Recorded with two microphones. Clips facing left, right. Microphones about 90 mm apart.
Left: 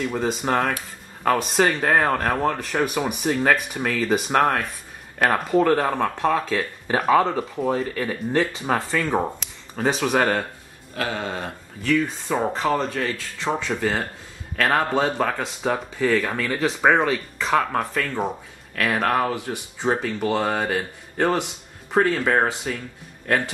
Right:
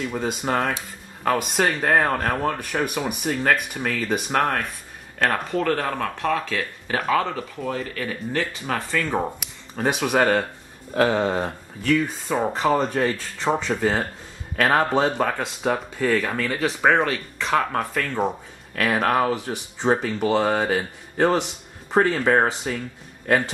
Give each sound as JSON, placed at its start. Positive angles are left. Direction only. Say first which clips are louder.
{"t": 0.0, "sound": "speech", "louder": "left 2 dB", "side_deg": 0}
{"t": 6.2, "sound": "speech", "louder": "left 1 dB", "side_deg": 20}
{"t": 7.0, "sound": "speech", "louder": "left 4 dB", "side_deg": 5}
{"t": 11.0, "sound": "speech", "louder": "right 7 dB", "side_deg": -30}
{"t": 11.4, "sound": "a man's voice", "louder": "right 2 dB", "side_deg": -5}
{"t": 15.0, "sound": "speech", "louder": "right 1 dB", "side_deg": 0}